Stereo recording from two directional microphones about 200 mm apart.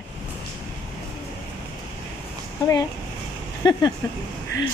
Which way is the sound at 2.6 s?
20° left (ahead or behind).